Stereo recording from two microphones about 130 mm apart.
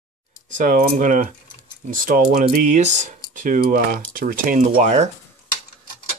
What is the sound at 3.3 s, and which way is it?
Speech, 90° right.